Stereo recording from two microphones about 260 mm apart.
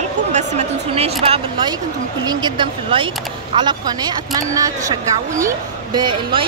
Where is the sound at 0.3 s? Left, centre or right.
Right.